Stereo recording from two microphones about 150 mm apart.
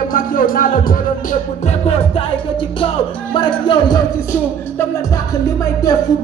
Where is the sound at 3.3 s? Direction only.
35° left (ahead or behind).